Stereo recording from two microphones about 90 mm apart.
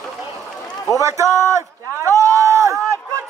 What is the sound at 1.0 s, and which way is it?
Speech, 35° right (ahead or behind).